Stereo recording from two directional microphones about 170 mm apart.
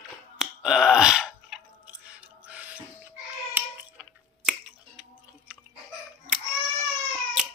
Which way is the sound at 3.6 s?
10° right (ahead or behind).